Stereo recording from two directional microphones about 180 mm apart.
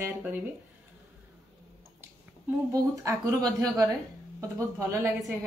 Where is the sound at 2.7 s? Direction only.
15° right (ahead or behind).